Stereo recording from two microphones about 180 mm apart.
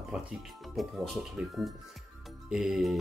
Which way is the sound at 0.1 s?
5° right (ahead or behind).